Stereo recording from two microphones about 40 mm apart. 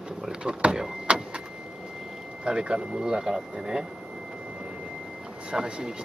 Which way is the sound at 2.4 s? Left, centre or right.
Right.